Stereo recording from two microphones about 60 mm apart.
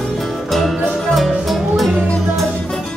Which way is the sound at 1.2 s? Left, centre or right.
Centre.